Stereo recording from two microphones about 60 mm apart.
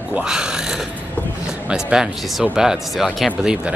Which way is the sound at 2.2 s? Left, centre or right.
Centre.